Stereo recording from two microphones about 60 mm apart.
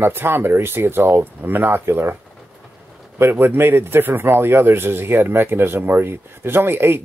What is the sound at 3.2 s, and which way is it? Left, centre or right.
Speech, right.